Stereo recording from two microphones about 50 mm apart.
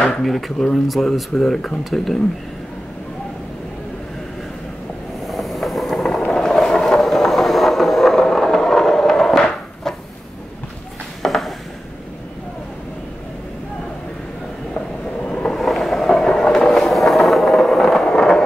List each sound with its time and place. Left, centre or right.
0.1 s speech: centre
5.2 s vehicle: centre
11.2 s a sound: centre
15.2 s vehicle: centre
15.6 s train: centre
16.6 s vehicle: centre
18.0 s a sound: centre